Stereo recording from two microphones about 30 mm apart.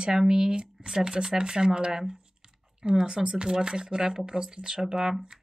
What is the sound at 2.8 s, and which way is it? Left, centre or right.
Speech, right.